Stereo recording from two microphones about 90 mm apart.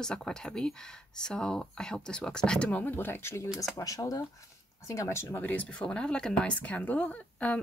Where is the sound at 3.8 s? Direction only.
40° left (ahead or behind).